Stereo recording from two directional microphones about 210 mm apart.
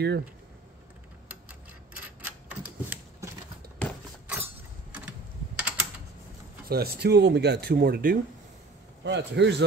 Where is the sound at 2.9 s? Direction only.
10° right (ahead or behind).